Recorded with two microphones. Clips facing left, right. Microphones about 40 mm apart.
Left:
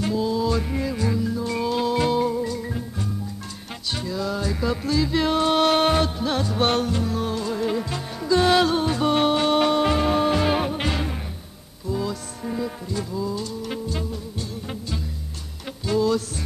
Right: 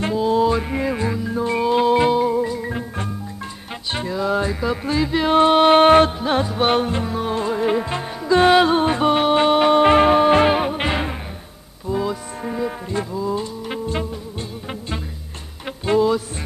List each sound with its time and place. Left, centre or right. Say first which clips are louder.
0.0 s music: right 5 dB; right
3.9 s music: right 6 dB; right
6.1 s music: right 4 dB; right
10.5 s music: right 4 dB; centre
15.8 s music: right 5 dB; right